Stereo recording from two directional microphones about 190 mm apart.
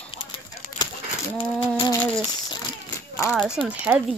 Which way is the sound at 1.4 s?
25° left (ahead or behind).